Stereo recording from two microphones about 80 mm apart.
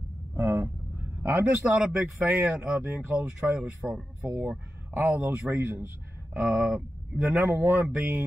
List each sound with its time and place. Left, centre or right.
0.4 s vehicle: right
1.7 s speech: centre